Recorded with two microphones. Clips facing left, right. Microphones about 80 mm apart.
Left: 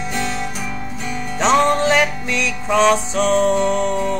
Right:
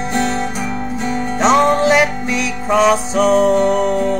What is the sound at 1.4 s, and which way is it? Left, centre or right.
Music, centre.